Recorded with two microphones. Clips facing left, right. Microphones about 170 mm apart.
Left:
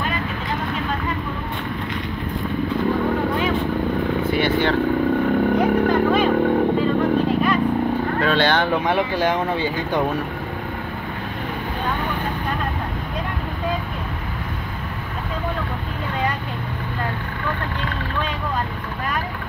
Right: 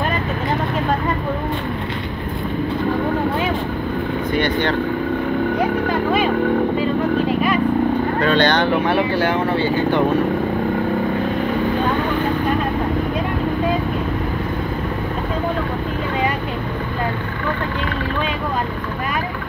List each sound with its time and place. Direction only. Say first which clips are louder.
4.3 s speech: right 1 dB; 5° left (ahead or behind)
8.2 s vehicle: right 2 dB; 5° left (ahead or behind)
8.8 s speech: right 2 dB; 15° left (ahead or behind)